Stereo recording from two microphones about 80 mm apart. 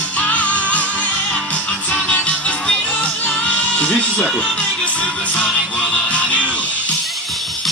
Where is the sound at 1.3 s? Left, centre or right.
Centre.